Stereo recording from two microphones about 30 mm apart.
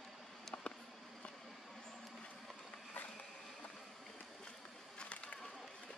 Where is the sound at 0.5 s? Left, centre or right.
Left.